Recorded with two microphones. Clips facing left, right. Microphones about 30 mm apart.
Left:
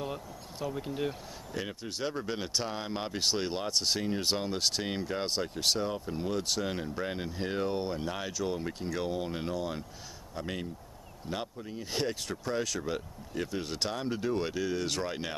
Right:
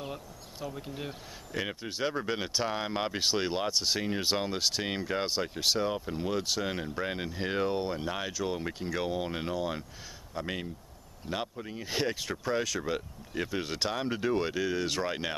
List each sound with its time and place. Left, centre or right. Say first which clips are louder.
0.1 s speech: left 2 dB; centre
1.8 s speech: right 2 dB; centre
5.9 s speech: right 2 dB; right
6.4 s speech: right 1 dB; centre
7.7 s speech: right 1 dB; centre
11.5 s speech: right 1 dB; right
11.8 s speech: right 2 dB; centre